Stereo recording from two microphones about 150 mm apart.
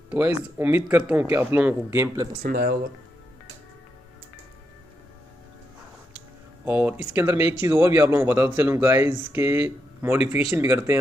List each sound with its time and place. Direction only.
0.1 s speech: 15° right (ahead or behind)
2.4 s speech: 90° right
6.6 s speech: 10° right (ahead or behind)